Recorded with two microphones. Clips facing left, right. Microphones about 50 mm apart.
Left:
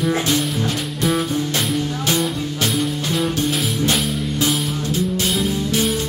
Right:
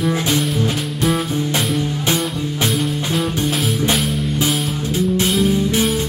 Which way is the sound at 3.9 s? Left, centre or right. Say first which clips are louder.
Right 2 dB; centre.